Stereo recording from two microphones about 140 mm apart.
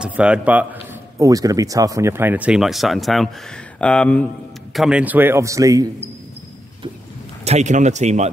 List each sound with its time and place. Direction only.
0.0 s a man's voice: 5° right (ahead or behind)
1.1 s speech: 25° right (ahead or behind); by 4.3 s 10° left (ahead or behind)
4.7 s speech: 5° right (ahead or behind); by 5.9 s 25° right (ahead or behind)
7.4 s speech: 55° right (ahead or behind)